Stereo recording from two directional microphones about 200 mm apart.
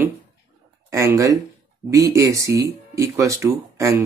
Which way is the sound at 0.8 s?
15° right (ahead or behind).